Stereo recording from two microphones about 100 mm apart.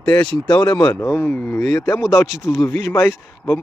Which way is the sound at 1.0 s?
20° left (ahead or behind).